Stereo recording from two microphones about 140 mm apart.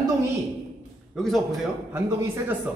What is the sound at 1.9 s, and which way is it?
Speech, 15° right (ahead or behind).